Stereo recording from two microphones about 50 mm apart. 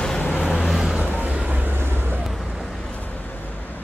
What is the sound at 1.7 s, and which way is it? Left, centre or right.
Vehicle, right.